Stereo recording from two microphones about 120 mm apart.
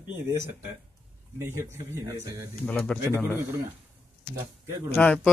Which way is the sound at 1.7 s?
20° right (ahead or behind).